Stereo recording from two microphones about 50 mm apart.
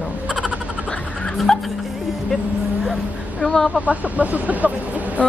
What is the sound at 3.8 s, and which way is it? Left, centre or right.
Speech, right.